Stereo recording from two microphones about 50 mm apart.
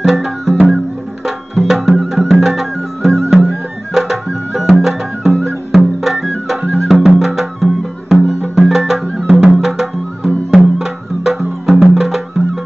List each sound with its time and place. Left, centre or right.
0.0 s music: centre
1.7 s music: centre
9.3 s music: centre
9.6 s music: centre